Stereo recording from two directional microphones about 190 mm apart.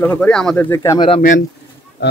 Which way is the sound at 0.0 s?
10° left (ahead or behind).